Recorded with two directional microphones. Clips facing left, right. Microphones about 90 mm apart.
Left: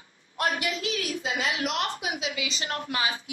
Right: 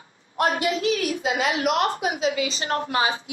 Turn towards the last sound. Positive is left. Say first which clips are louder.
# right 6 dB
turn(degrees=-30)  # may be behind; listen again after turning